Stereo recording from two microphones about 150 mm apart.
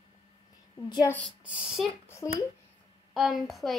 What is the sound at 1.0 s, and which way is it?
Speech, 10° left (ahead or behind).